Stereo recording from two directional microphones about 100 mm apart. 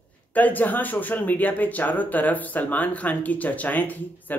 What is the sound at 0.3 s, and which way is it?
Speech, 15° left (ahead or behind).